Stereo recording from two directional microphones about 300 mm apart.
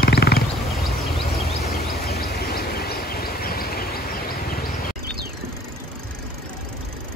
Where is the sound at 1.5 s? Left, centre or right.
Left.